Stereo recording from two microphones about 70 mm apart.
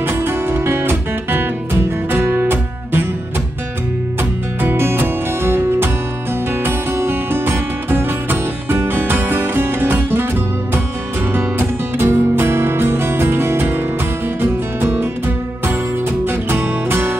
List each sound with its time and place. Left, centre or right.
0.0 s music: right
4.2 s music: right
11.3 s music: right
16.3 s music: right